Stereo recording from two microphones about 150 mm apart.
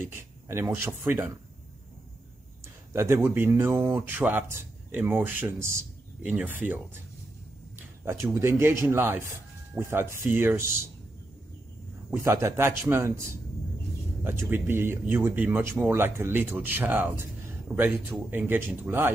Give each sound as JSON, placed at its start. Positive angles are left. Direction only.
{"t": 0.0, "sound": "speech", "side_deg": -15}
{"t": 2.9, "sound": "speech", "side_deg": -15}
{"t": 8.0, "sound": "speech", "side_deg": -15}
{"t": 12.1, "sound": "speech", "side_deg": -20}